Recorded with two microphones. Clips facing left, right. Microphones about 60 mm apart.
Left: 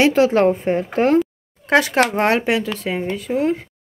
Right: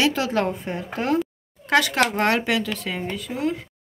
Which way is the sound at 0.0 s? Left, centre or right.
Left.